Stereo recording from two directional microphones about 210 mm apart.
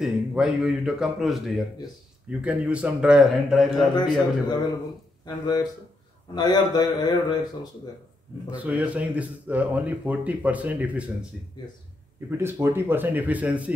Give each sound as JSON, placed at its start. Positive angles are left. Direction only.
{"t": 0.0, "sound": "a man's voice", "side_deg": 0}
{"t": 3.9, "sound": "a man's voice", "side_deg": 20}
{"t": 8.5, "sound": "speech", "side_deg": -5}
{"t": 12.3, "sound": "speech", "side_deg": -10}